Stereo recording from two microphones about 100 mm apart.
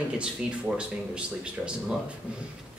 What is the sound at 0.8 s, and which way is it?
Speech, 10° right (ahead or behind).